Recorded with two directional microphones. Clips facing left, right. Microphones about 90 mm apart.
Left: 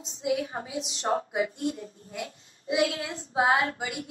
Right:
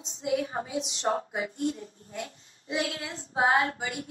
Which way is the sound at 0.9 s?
35° left (ahead or behind).